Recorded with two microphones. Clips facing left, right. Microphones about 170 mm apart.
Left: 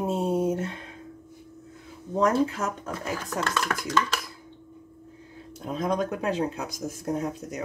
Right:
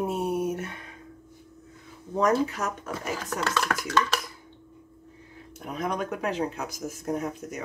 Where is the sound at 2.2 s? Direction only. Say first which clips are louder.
Left 1 dB; 30° left (ahead or behind).